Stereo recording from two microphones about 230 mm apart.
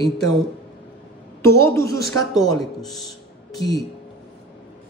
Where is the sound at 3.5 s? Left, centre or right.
Centre.